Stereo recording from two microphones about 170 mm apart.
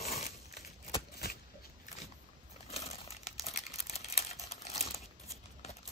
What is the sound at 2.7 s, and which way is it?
Crumpling, 35° left (ahead or behind).